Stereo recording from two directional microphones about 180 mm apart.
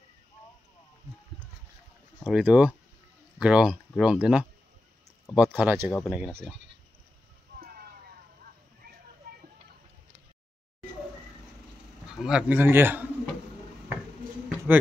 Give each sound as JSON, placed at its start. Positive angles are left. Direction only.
{"t": 2.2, "sound": "speech", "side_deg": -10}
{"t": 7.5, "sound": "clip-clop", "side_deg": -55}
{"t": 12.2, "sound": "speech", "side_deg": -5}
{"t": 14.7, "sound": "a man's voice", "side_deg": -10}